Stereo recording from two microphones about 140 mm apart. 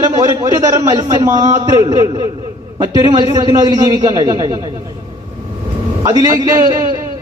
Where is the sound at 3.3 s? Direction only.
25° right (ahead or behind).